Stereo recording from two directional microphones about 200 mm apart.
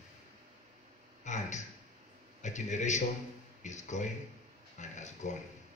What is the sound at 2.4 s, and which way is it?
A man's voice, 35° left (ahead or behind).